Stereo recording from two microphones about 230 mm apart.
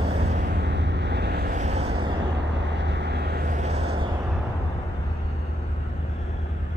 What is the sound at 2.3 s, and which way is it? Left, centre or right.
Vehicle, right.